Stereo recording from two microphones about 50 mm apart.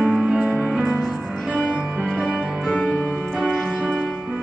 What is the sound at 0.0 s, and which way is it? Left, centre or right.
Music, centre.